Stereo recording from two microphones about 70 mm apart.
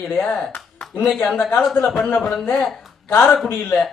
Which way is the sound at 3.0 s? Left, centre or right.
Left.